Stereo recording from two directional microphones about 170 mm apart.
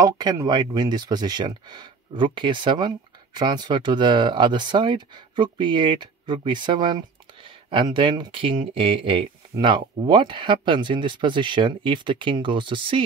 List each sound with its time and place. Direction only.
0.0 s speech: 20° right (ahead or behind)